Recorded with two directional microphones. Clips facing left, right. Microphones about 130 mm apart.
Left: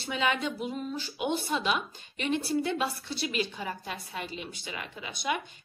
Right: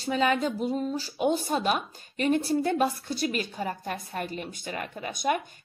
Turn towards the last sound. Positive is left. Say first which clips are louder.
# right 5 dB
turn(degrees=-45)  # may be behind; listen again after turning